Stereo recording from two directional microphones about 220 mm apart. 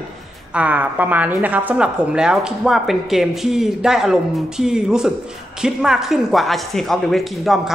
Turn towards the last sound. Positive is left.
turn(degrees=0)  # may be behind; listen again after turning